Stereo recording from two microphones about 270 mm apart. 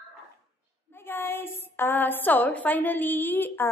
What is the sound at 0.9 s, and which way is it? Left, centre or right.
A woman's voice, centre.